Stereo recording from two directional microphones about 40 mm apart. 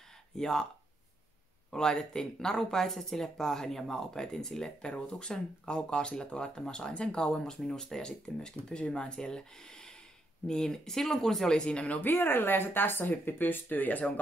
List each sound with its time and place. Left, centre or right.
0.4 s speech: centre
1.7 s speech: centre
12.1 s speech: left